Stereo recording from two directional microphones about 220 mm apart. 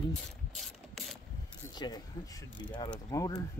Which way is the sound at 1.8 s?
20° left (ahead or behind).